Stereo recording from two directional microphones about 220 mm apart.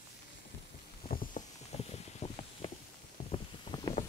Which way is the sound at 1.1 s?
30° left (ahead or behind).